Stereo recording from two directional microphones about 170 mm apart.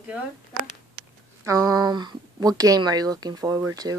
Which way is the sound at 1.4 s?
20° right (ahead or behind).